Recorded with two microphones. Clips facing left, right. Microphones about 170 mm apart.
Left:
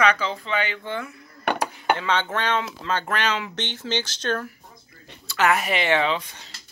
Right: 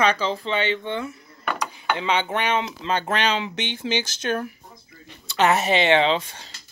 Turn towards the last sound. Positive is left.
turn(degrees=-30)  # may be behind; listen again after turning